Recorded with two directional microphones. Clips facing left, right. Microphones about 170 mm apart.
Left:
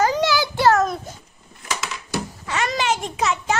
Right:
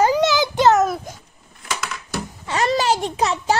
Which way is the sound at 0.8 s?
5° right (ahead or behind).